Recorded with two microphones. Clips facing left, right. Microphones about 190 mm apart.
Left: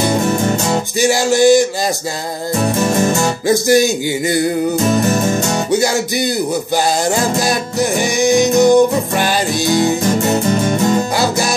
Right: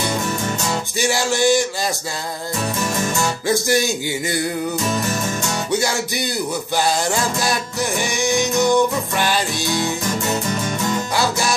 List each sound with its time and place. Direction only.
0.0 s music: 40° left (ahead or behind)
2.8 s music: 40° left (ahead or behind)
7.1 s music: 40° left (ahead or behind)